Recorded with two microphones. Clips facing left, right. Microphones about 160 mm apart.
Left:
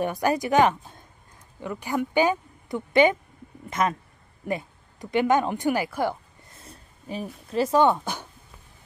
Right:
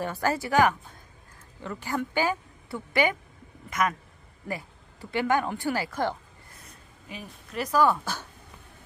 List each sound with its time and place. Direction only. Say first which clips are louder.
0.0 s speech: left 4 dB; 15° left (ahead or behind)
5.1 s speech: left 4 dB; 20° left (ahead or behind)
6.6 s speech: left 3 dB; 30° left (ahead or behind); by 8.3 s 15° left (ahead or behind)